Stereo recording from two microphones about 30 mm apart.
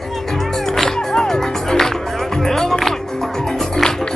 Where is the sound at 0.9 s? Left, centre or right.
Centre.